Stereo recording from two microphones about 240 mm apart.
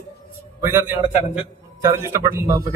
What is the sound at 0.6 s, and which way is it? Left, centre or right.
A woman's voice, centre.